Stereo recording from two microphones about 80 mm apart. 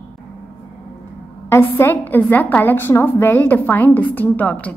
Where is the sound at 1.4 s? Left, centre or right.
Left.